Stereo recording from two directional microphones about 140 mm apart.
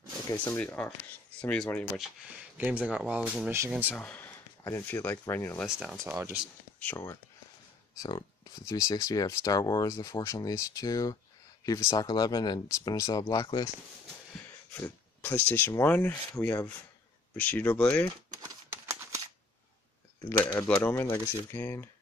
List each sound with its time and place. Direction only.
0.4 s speech: 15° left (ahead or behind)
2.5 s speech: 10° right (ahead or behind)
4.0 s speech: 15° left (ahead or behind)
5.7 s speech: 5° right (ahead or behind)
6.8 s speech: 15° left (ahead or behind)
8.6 s speech: 25° left (ahead or behind)
14.8 s speech: 15° left (ahead or behind)
18.3 s a sound: 20° right (ahead or behind)
20.2 s speech: 10° left (ahead or behind)